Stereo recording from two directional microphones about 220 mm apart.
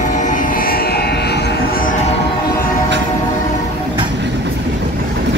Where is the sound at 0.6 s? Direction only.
45° left (ahead or behind).